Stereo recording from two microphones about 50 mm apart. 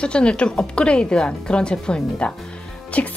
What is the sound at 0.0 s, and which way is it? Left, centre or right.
A woman's voice, left.